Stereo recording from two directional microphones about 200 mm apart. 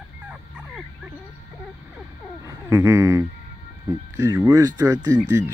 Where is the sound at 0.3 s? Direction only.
5° right (ahead or behind).